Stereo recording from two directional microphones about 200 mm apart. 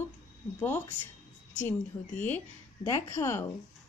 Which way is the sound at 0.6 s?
10° left (ahead or behind).